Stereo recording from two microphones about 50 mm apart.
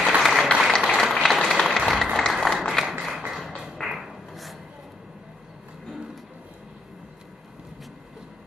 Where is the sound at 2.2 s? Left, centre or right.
Centre.